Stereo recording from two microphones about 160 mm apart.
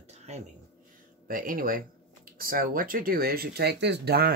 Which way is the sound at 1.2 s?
60° right (ahead or behind).